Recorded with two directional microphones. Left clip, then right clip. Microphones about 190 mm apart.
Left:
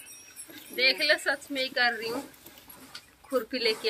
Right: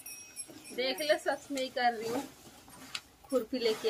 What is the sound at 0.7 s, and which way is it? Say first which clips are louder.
Speech: left 7 dB; 15° right (ahead or behind).